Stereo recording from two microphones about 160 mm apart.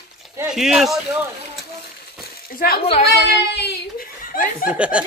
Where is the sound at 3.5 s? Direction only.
90° left.